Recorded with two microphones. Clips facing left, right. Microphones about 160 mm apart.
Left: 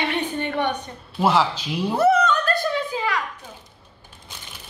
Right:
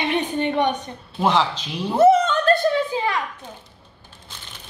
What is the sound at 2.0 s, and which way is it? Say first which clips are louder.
Music: right 4 dB; 25° right (ahead or behind).